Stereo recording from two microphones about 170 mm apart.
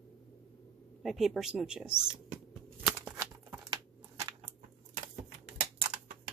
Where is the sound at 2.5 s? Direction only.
Centre (ahead or behind).